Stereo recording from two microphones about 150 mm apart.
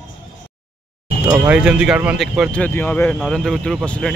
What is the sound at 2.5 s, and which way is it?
Speech, 10° left (ahead or behind).